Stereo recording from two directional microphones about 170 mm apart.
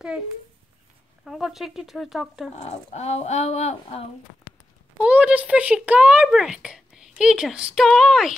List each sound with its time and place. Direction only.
1.2 s a child's voice: centre (ahead or behind)
2.5 s speech: 40° left (ahead or behind)
5.0 s a child's voice: 10° right (ahead or behind)